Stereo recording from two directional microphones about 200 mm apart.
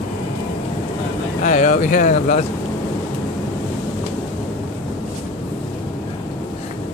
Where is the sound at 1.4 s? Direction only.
40° left (ahead or behind).